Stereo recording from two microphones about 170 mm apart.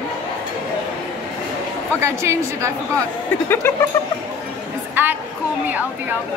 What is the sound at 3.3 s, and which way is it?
Speech, 10° left (ahead or behind).